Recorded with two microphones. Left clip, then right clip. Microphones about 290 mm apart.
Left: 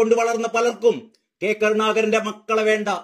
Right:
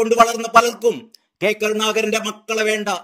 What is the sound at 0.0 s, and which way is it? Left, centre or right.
Speech, centre.